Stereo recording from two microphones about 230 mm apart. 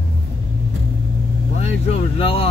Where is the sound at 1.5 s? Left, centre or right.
Left.